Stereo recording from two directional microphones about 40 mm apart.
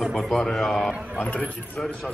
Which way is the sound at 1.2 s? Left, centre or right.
Left.